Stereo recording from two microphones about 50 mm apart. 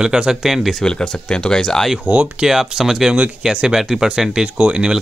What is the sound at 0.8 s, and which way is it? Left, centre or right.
Speech, centre.